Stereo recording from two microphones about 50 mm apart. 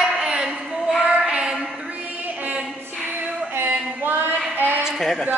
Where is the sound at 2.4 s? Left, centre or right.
Right.